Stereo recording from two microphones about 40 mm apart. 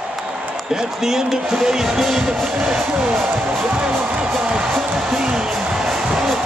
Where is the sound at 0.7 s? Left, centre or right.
Centre.